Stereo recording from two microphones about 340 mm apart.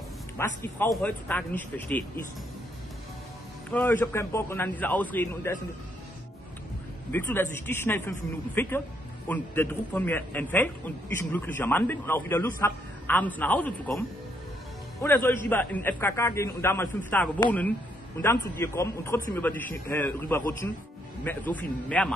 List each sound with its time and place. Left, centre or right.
0.4 s a man's voice: centre
3.7 s a man's voice: centre
7.1 s a man's voice: centre